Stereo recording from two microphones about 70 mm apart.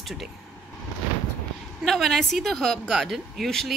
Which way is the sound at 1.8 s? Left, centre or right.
Centre.